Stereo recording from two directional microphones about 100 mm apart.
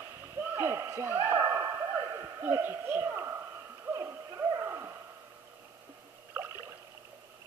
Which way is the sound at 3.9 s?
30° right (ahead or behind).